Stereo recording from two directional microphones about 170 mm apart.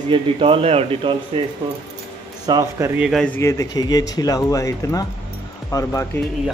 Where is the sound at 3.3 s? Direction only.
15° left (ahead or behind).